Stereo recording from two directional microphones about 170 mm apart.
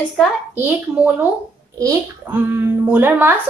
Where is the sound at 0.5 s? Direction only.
10° right (ahead or behind).